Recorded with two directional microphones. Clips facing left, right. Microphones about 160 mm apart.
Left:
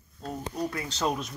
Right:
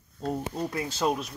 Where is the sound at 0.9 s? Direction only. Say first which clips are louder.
Right 2 dB; 10° right (ahead or behind).